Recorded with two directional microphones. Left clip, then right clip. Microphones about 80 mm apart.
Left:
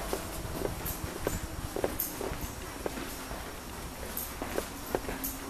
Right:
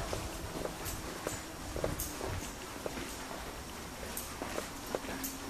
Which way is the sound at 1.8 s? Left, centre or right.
Centre.